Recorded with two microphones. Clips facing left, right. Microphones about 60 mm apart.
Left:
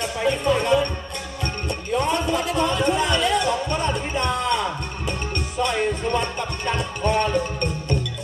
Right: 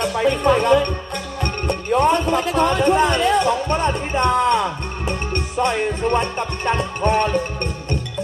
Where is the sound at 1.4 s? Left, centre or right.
Right.